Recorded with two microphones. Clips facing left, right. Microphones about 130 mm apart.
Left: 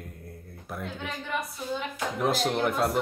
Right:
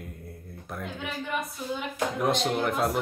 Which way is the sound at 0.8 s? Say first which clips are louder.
Even; 10° right (ahead or behind).